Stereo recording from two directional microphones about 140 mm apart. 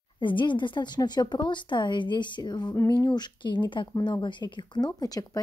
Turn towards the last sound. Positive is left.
turn(degrees=25)  # may be behind; listen again after turning